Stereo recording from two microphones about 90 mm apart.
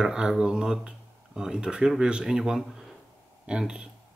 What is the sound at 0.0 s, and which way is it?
Speech, 5° right (ahead or behind).